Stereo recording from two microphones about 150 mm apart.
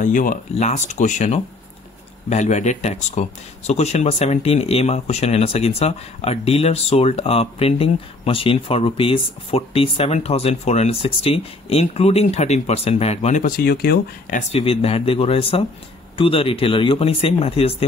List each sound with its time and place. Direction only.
0.0 s speech: 60° left (ahead or behind)
13.5 s speech: 90° left
14.5 s speech: 40° left (ahead or behind)